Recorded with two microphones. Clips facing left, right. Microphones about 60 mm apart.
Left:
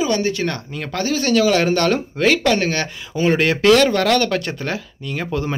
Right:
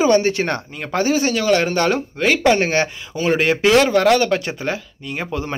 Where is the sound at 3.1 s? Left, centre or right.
Centre.